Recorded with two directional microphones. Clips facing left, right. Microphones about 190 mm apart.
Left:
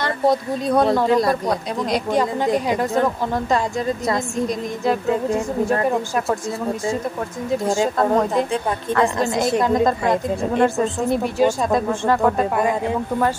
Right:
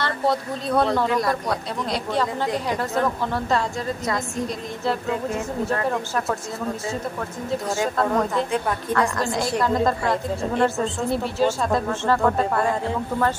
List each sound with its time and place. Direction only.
0.0 s speech: 15° left (ahead or behind)
1.0 s a man's voice: 30° left (ahead or behind)
1.5 s a woman's voice: 15° left (ahead or behind)
5.9 s a woman's voice: 15° left (ahead or behind)
8.9 s a woman's voice: 20° left (ahead or behind)